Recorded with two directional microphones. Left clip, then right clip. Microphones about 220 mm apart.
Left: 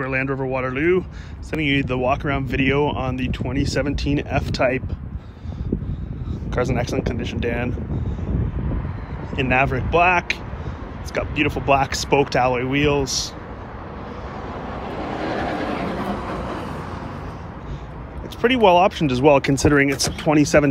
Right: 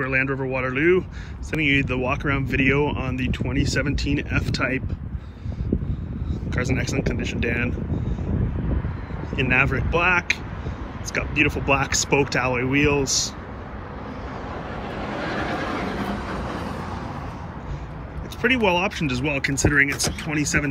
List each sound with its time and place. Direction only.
0.0 s speech: 5° left (ahead or behind)
6.5 s speech: 10° left (ahead or behind)
9.4 s speech: 10° left (ahead or behind)
11.4 s speech: 5° left (ahead or behind)
14.7 s vehicle: 45° left (ahead or behind)
18.4 s speech: 10° left (ahead or behind)